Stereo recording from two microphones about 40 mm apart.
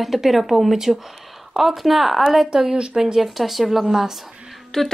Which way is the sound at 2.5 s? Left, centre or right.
Right.